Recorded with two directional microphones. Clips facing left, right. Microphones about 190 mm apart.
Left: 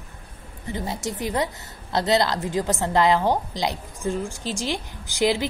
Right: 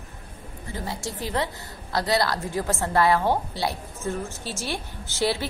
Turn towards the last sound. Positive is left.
turn(degrees=15)  # may be behind; listen again after turning